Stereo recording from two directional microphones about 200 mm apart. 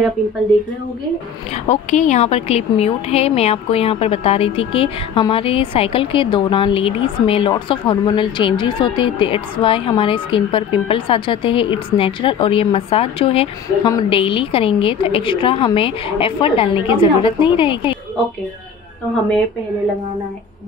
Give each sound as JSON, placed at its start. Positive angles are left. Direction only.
{"t": 1.5, "sound": "speech", "side_deg": 35}